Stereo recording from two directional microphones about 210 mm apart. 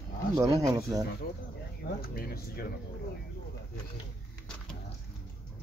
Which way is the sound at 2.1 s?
45° left (ahead or behind).